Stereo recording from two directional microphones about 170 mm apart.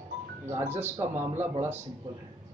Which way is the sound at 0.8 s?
15° right (ahead or behind).